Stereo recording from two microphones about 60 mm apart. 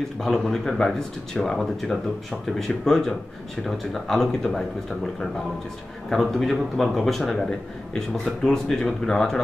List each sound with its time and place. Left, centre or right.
0.2 s a man's voice: centre
6.0 s a man's voice: centre